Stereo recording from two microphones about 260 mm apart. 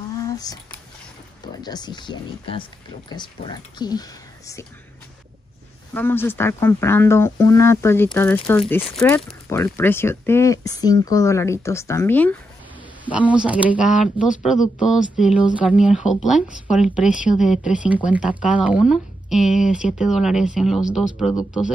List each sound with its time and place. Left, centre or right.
0.2 s a sound: centre
1.4 s speech: centre
5.9 s speech: centre
13.0 s speech: centre